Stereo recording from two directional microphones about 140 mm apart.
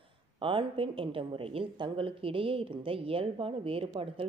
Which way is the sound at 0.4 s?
40° right (ahead or behind).